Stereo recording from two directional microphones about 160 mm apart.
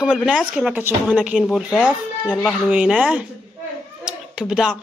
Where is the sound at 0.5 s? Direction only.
5° right (ahead or behind).